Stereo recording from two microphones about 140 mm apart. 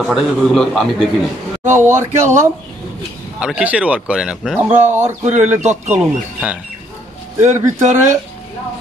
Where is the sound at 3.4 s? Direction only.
10° right (ahead or behind).